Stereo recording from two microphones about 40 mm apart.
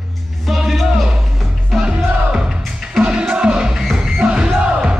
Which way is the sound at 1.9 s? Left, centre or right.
Right.